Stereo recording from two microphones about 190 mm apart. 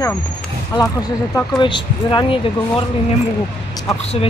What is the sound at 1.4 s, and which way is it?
Speech, 25° left (ahead or behind).